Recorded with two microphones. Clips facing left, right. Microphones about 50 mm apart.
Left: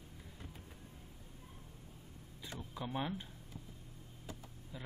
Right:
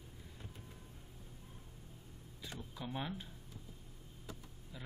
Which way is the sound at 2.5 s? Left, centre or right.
Centre.